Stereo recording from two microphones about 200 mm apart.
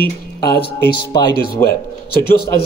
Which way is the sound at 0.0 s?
50° left (ahead or behind).